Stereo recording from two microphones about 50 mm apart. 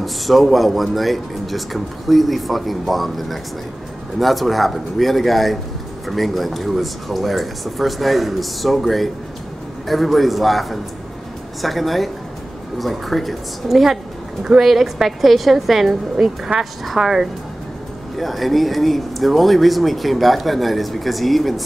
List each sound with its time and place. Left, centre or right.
0.0 s speech: centre
16.5 s speech: right
16.8 s speech: centre